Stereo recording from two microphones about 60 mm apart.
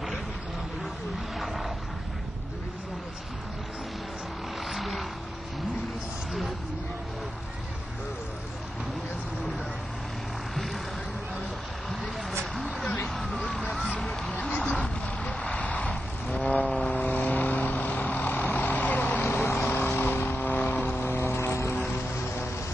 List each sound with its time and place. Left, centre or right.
4.6 s vehicle: centre
10.5 s vehicle: centre
13.3 s vehicle: centre
13.9 s music: centre
14.6 s vehicle: centre
16.3 s vehicle: centre; by 21.0 s left
21.0 s vehicle: left